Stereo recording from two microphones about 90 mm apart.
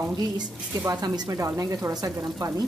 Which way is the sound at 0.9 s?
45° right (ahead or behind).